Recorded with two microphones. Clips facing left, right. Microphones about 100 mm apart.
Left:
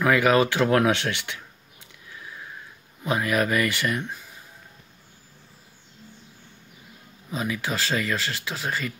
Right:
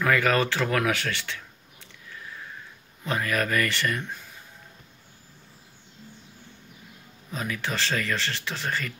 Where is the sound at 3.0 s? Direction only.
15° left (ahead or behind).